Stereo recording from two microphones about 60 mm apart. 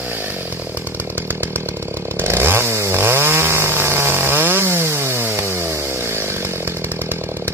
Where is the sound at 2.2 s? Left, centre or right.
Right.